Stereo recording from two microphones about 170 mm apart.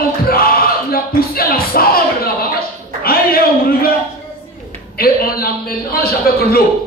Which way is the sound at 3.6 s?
60° left (ahead or behind).